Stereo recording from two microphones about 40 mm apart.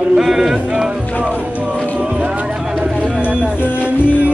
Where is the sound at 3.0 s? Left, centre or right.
Right.